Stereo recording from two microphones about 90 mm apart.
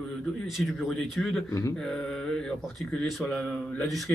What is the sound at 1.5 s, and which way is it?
Mantra, 35° left (ahead or behind).